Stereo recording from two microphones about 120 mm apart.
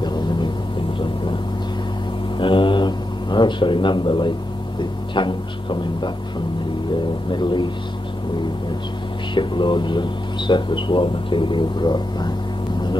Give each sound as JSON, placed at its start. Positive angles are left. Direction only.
{"t": 0.0, "sound": "a sound", "side_deg": 35}
{"t": 2.3, "sound": "mantra", "side_deg": 45}
{"t": 5.1, "sound": "speech", "side_deg": 40}
{"t": 9.3, "sound": "speech", "side_deg": 40}